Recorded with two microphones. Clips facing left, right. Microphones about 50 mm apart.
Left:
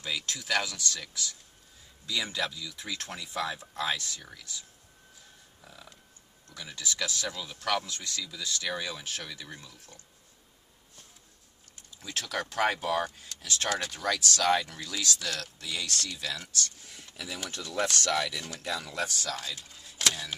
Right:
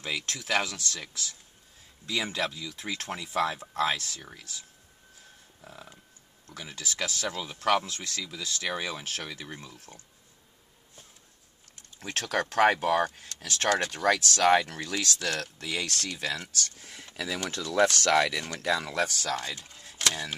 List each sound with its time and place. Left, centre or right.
0.0 s speech: right
0.5 s speech: right
5.6 s a sound: right
6.5 s speech: right
7.9 s speech: right
8.2 s speech: right
12.0 s speech: right
14.0 s speech: right
16.8 s speech: right